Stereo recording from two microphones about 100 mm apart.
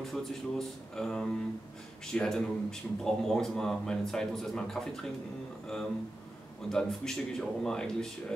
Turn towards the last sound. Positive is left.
turn(degrees=5)  # may be behind; listen again after turning